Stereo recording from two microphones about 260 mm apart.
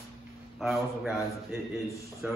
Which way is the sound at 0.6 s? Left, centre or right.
Centre.